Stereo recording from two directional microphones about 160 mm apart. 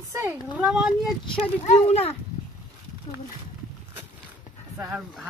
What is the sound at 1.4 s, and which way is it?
Speech, 40° left (ahead or behind).